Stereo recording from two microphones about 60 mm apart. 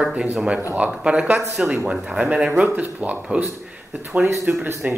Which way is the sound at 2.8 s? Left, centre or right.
Right.